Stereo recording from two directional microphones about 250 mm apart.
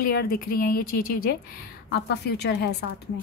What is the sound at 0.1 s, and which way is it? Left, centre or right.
A woman's voice, left.